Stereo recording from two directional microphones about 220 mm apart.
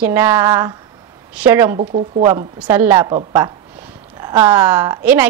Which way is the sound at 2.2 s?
15° right (ahead or behind).